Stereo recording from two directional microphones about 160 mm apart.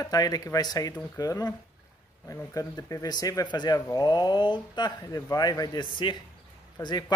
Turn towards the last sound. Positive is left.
turn(degrees=25)  # may be behind; listen again after turning